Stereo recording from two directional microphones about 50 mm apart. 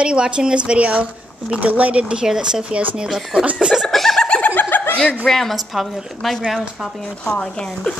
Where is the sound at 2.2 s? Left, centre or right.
Centre.